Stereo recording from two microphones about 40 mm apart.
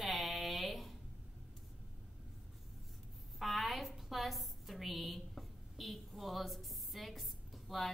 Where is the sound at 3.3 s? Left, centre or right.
Centre.